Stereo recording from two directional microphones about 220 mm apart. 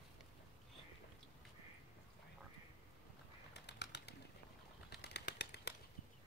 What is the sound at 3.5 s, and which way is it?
Bird, 50° left (ahead or behind).